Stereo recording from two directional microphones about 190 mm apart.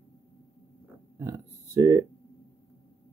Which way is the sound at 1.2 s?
15° right (ahead or behind).